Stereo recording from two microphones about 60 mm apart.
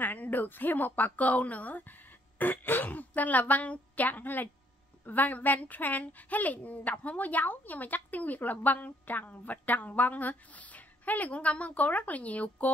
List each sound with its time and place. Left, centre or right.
0.0 s speech: left